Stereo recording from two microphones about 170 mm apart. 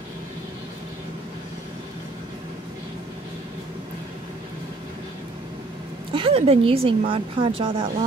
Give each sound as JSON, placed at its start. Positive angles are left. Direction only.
{"t": 6.1, "sound": "a woman's voice", "side_deg": -35}